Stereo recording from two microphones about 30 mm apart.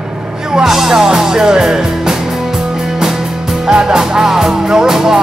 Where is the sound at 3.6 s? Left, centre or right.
Right.